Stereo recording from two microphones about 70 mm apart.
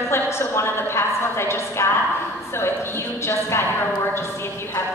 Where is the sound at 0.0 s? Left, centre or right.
Left.